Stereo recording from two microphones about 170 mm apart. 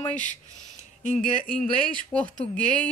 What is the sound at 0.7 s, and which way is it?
Speech, 45° left (ahead or behind).